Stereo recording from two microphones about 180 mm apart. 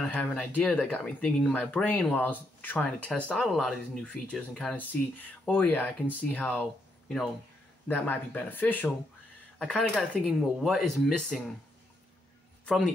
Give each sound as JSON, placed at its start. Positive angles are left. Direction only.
{"t": 0.0, "sound": "speech", "side_deg": 5}
{"t": 7.9, "sound": "speech", "side_deg": 10}
{"t": 12.6, "sound": "speech", "side_deg": 5}